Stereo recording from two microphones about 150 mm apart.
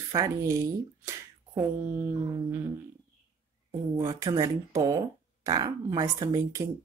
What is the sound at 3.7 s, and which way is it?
Speech, 20° right (ahead or behind).